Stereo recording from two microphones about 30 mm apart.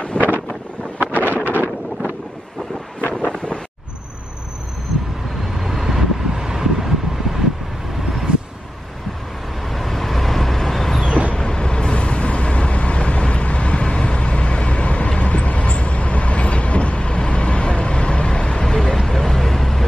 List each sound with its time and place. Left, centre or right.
0.2 s wind noise: left
1.2 s wind noise: right
5.8 s vehicle: centre
8.3 s vehicle: right
9.7 s vehicle: centre
11.3 s vehicle: left
15.2 s train: left
18.8 s vehicle: centre